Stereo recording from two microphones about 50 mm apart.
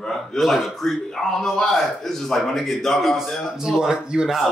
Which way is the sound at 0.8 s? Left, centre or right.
Centre.